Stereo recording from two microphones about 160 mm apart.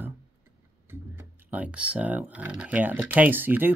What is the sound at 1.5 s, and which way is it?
Speech, 10° right (ahead or behind).